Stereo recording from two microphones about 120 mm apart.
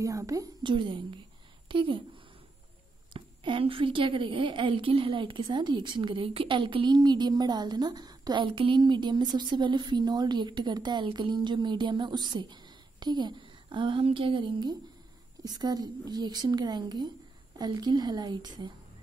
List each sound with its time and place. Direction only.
0.0 s a woman's voice: 30° right (ahead or behind)
0.7 s a woman's voice: 45° right (ahead or behind)
3.1 s a woman's voice: 45° right (ahead or behind)